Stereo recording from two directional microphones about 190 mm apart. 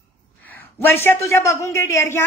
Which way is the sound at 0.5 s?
10° left (ahead or behind).